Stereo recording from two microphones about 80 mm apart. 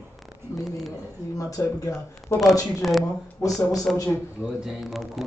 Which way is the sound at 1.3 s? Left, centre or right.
Left.